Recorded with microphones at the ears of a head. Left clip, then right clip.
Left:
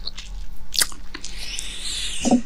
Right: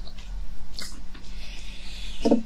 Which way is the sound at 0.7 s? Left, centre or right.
Left.